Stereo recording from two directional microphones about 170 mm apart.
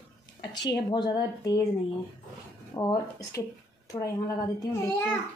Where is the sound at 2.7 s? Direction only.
20° left (ahead or behind).